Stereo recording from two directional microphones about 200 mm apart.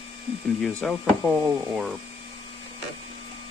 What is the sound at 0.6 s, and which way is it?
Speech, 5° left (ahead or behind).